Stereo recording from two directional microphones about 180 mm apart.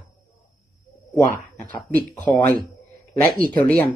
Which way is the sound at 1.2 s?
10° left (ahead or behind).